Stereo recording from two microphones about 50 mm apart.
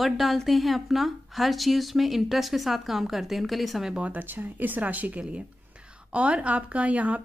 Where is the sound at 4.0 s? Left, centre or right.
Right.